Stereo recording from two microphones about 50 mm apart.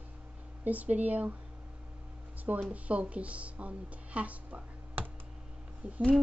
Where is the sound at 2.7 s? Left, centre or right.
Right.